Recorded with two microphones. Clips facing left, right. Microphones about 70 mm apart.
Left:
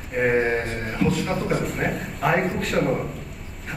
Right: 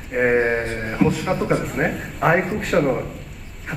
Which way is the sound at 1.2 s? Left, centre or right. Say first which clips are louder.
Right 4 dB; centre.